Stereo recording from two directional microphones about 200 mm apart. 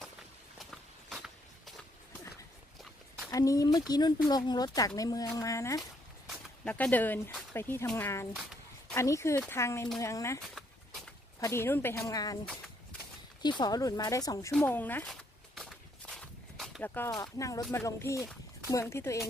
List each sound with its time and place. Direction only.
0.6 s walk: centre (ahead or behind)
3.3 s speech: 15° left (ahead or behind)
5.8 s speech: 5° left (ahead or behind)
8.4 s a sound: centre (ahead or behind)
8.9 s speech: 15° left (ahead or behind)
13.4 s speech: 20° left (ahead or behind)
14.5 s walk: 5° left (ahead or behind)
18.7 s speech: 15° left (ahead or behind)